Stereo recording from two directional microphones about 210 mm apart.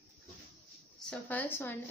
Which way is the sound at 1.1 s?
10° left (ahead or behind).